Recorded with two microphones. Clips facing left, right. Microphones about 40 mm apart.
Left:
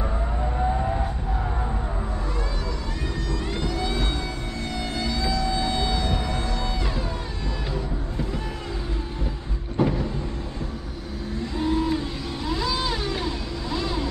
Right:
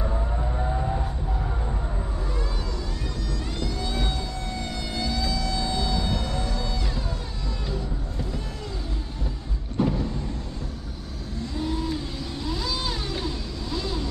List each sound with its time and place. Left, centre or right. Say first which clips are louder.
3.3 s vehicle: left 3 dB; left
3.9 s music: left 2 dB; centre
4.7 s a sound: left 2 dB; centre
9.8 s vehicle: left 2 dB; centre
11.5 s vehicle: left 5 dB; left